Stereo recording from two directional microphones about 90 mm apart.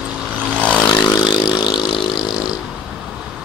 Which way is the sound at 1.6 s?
55° left (ahead or behind).